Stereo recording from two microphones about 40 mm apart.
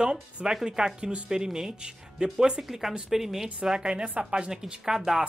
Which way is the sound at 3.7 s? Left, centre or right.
Right.